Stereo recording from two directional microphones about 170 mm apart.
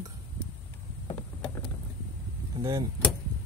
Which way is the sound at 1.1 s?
10° left (ahead or behind).